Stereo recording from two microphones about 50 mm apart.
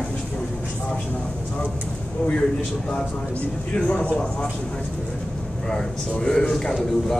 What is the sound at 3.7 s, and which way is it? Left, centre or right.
Speech, left.